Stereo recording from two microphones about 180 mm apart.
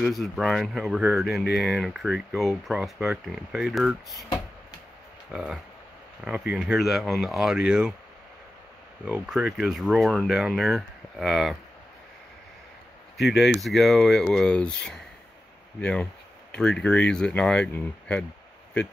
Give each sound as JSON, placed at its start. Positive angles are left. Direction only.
{"t": 0.0, "sound": "speech", "side_deg": 0}
{"t": 5.3, "sound": "speech", "side_deg": 0}
{"t": 9.0, "sound": "speech", "side_deg": -5}
{"t": 13.2, "sound": "speech", "side_deg": 0}